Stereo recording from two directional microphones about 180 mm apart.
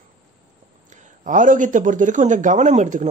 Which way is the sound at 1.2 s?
45° right (ahead or behind).